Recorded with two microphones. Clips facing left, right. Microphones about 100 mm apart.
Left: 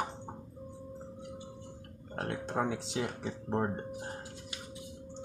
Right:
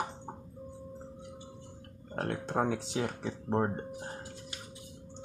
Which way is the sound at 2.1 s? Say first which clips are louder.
Right 2 dB; 45° right (ahead or behind).